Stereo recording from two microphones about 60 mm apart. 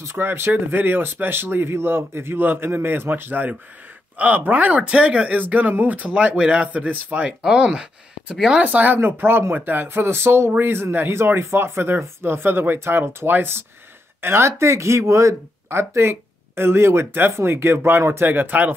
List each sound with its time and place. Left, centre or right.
0.0 s speech: right; by 8.5 s centre
8.5 s speech: right
9.8 s speech: right